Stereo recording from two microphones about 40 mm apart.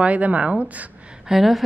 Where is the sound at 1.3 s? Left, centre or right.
Centre.